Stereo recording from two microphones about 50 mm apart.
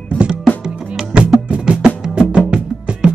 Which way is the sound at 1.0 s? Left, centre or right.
Right.